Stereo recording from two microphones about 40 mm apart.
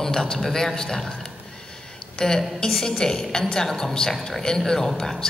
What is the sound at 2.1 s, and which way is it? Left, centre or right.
A woman's voice, centre.